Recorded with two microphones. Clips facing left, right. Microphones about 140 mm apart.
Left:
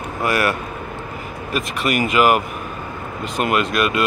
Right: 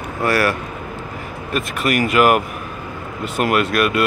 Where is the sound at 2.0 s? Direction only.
Centre (ahead or behind).